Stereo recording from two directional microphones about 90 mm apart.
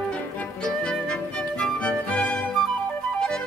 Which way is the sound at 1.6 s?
15° left (ahead or behind).